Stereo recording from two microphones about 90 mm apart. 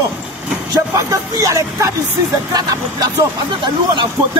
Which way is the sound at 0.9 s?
35° right (ahead or behind).